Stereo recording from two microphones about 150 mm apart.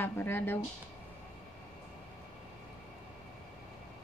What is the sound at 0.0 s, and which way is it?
Speech, 15° left (ahead or behind).